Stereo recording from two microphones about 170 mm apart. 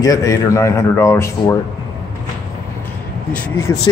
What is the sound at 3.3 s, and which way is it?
Speech, 10° left (ahead or behind).